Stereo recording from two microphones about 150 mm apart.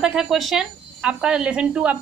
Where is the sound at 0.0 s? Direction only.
5° right (ahead or behind).